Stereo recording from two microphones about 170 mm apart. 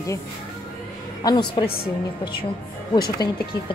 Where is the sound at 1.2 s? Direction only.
25° left (ahead or behind).